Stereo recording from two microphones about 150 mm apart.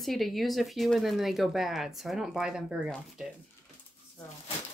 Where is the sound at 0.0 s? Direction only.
Centre (ahead or behind).